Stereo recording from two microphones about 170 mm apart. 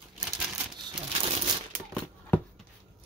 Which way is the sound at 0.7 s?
25° right (ahead or behind).